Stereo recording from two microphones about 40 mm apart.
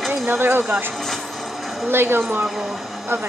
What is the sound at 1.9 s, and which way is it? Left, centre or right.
Speech, right.